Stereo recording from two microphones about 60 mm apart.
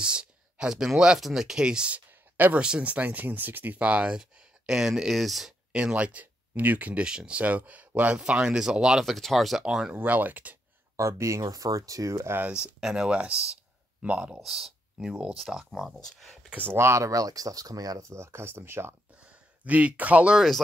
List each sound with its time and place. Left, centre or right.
0.0 s speech: centre
2.0 s a sound: right
2.6 s speech: centre
5.7 s speech: centre
8.2 s speech: centre
9.0 s speech: centre
9.9 s speech: right
11.0 s speech: right
12.5 s speech: centre
14.4 s speech: centre
16.7 s speech: right
19.6 s speech: right
20.3 s speech: centre